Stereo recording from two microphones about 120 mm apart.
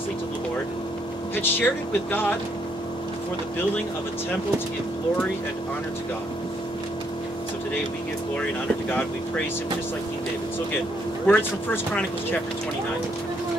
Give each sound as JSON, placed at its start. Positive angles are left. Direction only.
{"t": 1.3, "sound": "speech", "side_deg": 15}
{"t": 11.2, "sound": "speech", "side_deg": 15}